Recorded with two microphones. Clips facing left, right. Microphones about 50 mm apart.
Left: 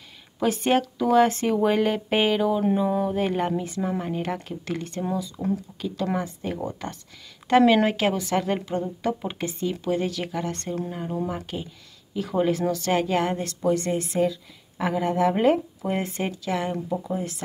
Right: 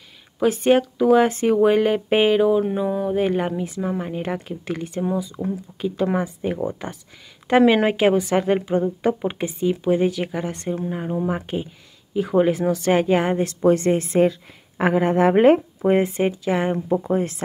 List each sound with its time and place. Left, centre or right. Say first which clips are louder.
0.4 s a woman's voice: right 5 dB; centre; by 13.6 s right
13.6 s a woman's voice: right 6 dB; right
16.0 s a woman's voice: right 8 dB; right
17.0 s speech: right 7 dB; right